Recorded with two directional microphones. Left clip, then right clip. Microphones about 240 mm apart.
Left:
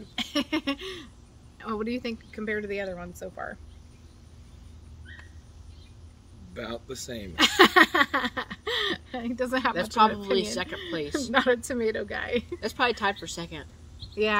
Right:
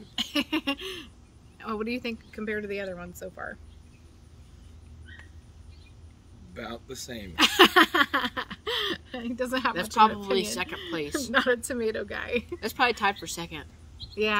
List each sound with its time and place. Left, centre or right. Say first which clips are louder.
0.1 s a sound: even; centre
1.6 s speech: even; centre
6.5 s speech: left 2 dB; centre
7.3 s a sound: even; centre
10.0 s speech: right 1 dB; right
11.3 s speech: left 1 dB; centre
12.5 s speech: right 2 dB; right